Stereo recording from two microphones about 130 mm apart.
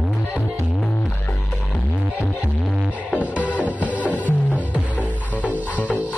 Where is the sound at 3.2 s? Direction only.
10° right (ahead or behind).